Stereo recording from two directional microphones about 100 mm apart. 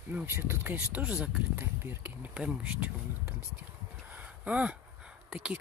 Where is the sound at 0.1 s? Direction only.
20° right (ahead or behind).